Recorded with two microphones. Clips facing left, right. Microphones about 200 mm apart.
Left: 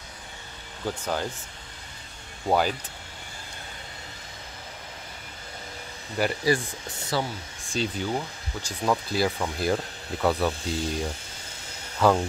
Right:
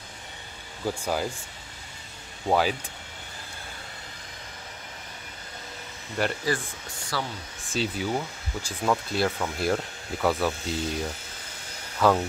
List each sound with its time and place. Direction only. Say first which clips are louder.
0.8 s speech: right 1 dB; 10° right (ahead or behind)
2.4 s speech: even; centre (ahead or behind)
6.1 s speech: left 2 dB; 5° left (ahead or behind)
7.1 s speech: left 4 dB; 20° left (ahead or behind)
7.7 s speech: even; centre (ahead or behind)